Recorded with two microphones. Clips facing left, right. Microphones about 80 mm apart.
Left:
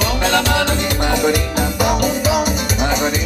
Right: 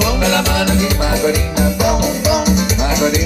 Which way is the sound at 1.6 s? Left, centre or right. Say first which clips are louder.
Right 2 dB; centre.